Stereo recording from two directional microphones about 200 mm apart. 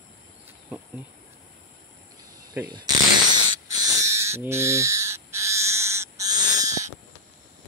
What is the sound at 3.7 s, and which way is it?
Owl, 15° right (ahead or behind).